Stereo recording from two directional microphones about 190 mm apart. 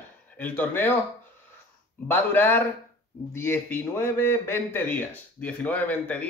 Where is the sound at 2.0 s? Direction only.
10° left (ahead or behind).